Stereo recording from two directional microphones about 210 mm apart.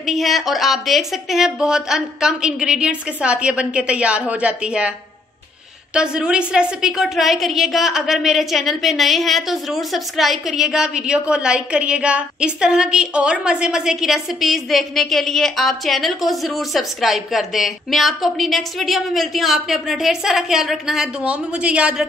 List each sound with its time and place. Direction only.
0.0 s a woman's voice: centre (ahead or behind)
5.9 s a woman's voice: 5° right (ahead or behind)